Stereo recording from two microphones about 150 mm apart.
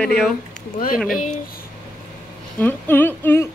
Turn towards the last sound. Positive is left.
turn(degrees=15)  # may be behind; listen again after turning